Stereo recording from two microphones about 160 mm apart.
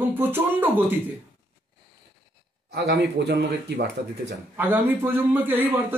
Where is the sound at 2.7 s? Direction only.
90° right.